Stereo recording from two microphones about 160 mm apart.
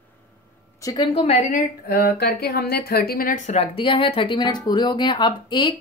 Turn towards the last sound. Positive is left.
turn(degrees=30)  # may be behind; listen again after turning